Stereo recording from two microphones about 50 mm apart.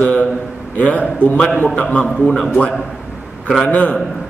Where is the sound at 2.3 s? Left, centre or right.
Centre.